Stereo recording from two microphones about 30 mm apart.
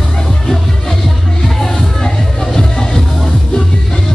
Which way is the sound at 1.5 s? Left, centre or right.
Centre.